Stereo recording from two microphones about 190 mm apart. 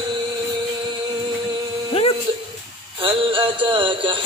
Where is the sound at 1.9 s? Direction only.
30° left (ahead or behind).